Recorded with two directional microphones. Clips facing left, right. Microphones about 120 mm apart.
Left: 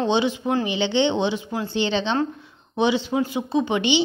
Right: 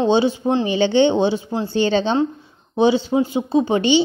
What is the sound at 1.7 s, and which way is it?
A woman's voice, 40° right (ahead or behind).